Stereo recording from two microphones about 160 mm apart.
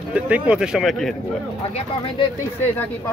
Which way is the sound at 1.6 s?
35° left (ahead or behind).